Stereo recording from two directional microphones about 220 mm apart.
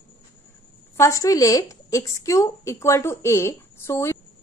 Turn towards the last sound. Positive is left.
turn(degrees=10)  # may be behind; listen again after turning